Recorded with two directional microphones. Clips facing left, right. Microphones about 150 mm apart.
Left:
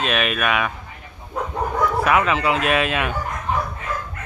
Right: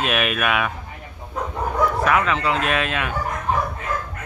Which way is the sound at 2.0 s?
10° left (ahead or behind).